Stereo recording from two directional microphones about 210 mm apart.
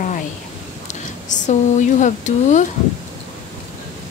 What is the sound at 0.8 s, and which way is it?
Speech, 35° left (ahead or behind).